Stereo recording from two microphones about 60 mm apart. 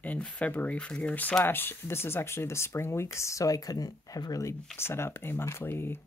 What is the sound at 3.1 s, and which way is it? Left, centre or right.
Speech, left.